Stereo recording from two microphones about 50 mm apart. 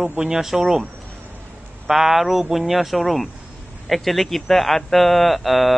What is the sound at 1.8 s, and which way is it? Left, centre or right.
Speech, centre.